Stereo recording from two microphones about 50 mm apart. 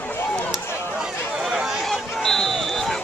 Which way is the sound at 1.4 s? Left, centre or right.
Centre.